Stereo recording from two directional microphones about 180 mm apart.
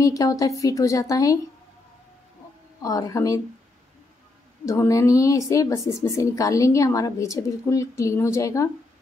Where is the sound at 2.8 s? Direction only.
20° left (ahead or behind).